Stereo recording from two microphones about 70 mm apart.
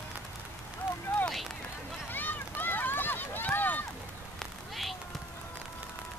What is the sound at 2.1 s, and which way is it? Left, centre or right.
Run, left.